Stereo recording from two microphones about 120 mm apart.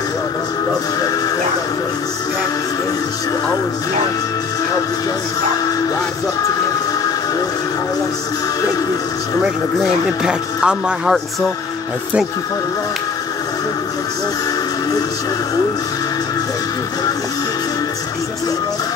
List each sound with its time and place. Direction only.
9.8 s speech: 5° right (ahead or behind)